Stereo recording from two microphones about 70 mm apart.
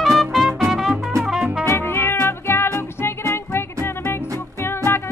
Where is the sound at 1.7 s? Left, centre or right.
Left.